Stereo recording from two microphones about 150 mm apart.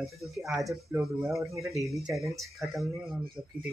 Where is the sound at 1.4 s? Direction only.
20° right (ahead or behind).